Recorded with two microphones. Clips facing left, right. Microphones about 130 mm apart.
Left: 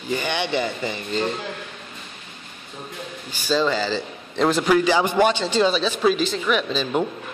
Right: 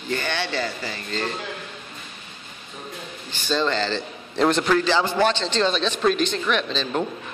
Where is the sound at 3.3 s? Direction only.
5° left (ahead or behind).